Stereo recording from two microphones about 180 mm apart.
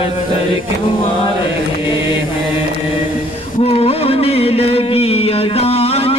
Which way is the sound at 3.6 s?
35° left (ahead or behind).